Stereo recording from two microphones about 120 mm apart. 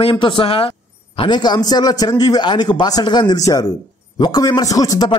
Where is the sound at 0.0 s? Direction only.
45° left (ahead or behind).